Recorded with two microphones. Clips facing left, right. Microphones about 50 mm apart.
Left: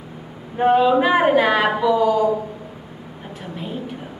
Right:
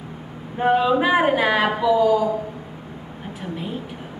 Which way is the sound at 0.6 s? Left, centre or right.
Centre.